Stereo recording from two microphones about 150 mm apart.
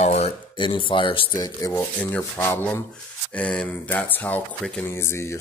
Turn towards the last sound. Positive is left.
turn(degrees=15)  # may be behind; listen again after turning